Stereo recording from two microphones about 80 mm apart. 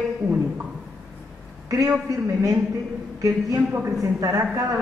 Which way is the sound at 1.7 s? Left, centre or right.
Right.